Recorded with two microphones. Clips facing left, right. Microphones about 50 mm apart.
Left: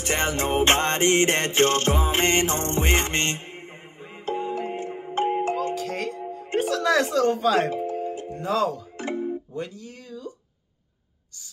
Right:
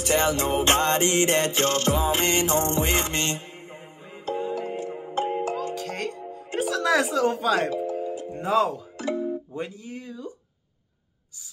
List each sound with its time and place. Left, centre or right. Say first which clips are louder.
0.0 s music: right 2 dB; left
5.8 s music: left 2 dB; centre
6.6 s speech: even; centre
8.0 s music: even; left
8.3 s speech: right 2 dB; centre
8.9 s music: right 1 dB; left
9.6 s music: even; centre